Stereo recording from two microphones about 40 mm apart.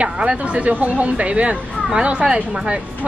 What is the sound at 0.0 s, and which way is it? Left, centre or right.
Speech, right.